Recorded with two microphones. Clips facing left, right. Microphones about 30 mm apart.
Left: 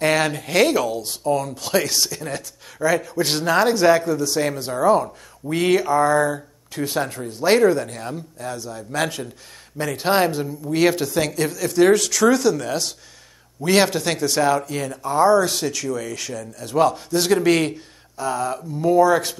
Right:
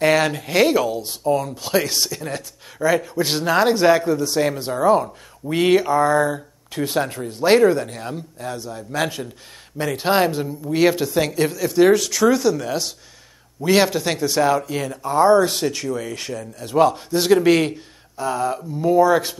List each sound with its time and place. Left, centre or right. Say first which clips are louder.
0.0 s speech: right 2 dB; centre
3.2 s speech: even; centre
4.0 s speech: right 2 dB; right
4.3 s speech: right 2 dB; centre
15.4 s speech: right 2 dB; centre
16.6 s speech: right 2 dB; centre